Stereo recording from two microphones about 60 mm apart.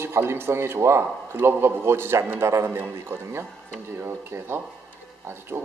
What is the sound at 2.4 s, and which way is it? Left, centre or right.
Speech, right.